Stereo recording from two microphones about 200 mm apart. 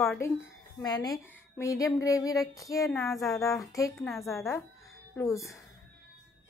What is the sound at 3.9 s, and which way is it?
Speech, centre (ahead or behind).